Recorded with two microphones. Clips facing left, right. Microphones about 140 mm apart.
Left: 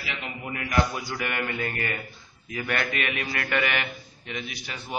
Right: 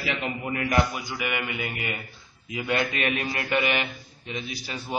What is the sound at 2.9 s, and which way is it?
A man's voice, 30° right (ahead or behind).